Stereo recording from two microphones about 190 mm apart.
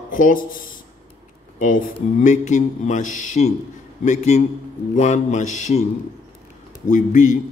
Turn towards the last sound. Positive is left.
turn(degrees=40)  # may be behind; listen again after turning